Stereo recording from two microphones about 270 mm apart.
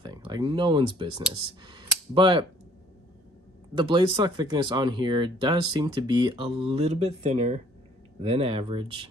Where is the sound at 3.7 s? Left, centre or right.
Centre.